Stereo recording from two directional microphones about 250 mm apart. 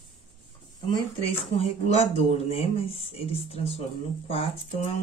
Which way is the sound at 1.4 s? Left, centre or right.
Left.